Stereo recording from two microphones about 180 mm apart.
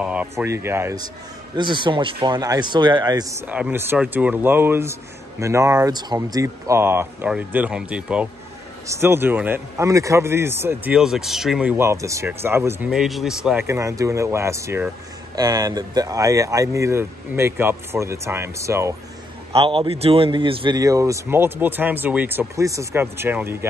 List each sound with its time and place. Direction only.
0.0 s a man's voice: 5° right (ahead or behind)
1.6 s a man's voice: 25° right (ahead or behind); by 13.7 s 5° right (ahead or behind)
13.7 s a man's voice: 15° right (ahead or behind)
19.5 s a man's voice: 30° right (ahead or behind); by 23.7 s 15° right (ahead or behind)